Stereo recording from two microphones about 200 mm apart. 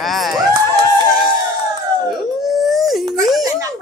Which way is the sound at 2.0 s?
Centre (ahead or behind).